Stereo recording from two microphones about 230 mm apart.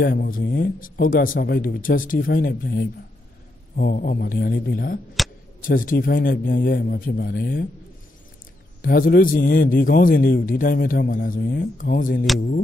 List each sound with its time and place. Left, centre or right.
0.0 s a man's voice: left
8.8 s a man's voice: left